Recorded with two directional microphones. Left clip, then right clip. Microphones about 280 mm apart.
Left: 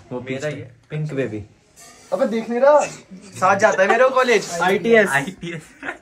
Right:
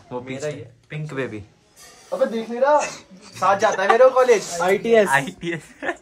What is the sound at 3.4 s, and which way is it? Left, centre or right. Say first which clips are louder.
A man's voice: left 3 dB; right.